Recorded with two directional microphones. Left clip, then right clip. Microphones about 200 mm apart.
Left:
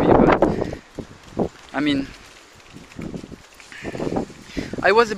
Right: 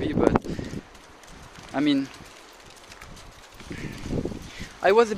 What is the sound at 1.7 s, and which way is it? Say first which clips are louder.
Speech: right 1 dB; centre (ahead or behind).